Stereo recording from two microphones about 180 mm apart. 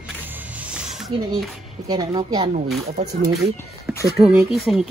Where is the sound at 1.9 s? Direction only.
20° right (ahead or behind).